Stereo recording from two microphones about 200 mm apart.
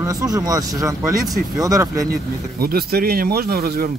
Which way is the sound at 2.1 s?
50° right (ahead or behind).